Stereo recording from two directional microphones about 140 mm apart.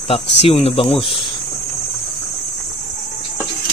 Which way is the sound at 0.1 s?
45° left (ahead or behind).